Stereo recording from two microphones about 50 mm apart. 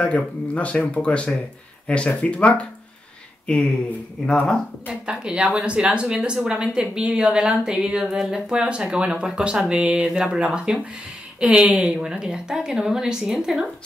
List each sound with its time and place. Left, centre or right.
0.0 s speech: left
5.0 s speech: centre